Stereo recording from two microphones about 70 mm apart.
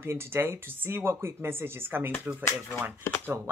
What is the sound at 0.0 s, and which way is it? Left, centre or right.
Speech, right.